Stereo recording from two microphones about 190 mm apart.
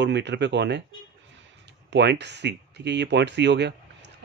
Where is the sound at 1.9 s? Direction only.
65° right (ahead or behind).